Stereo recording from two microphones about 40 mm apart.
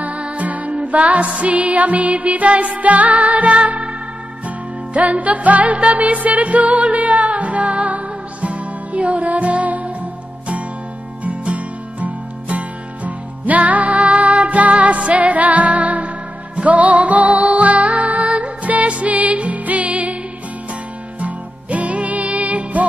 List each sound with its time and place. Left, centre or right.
0.0 s music: right
11.2 s music: right
21.2 s music: right